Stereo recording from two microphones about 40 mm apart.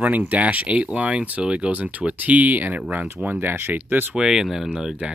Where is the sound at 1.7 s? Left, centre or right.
Right.